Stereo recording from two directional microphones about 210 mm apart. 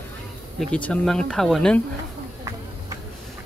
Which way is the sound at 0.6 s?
5° left (ahead or behind).